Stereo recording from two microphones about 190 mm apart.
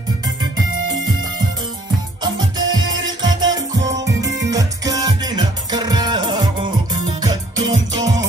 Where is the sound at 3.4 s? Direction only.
25° right (ahead or behind).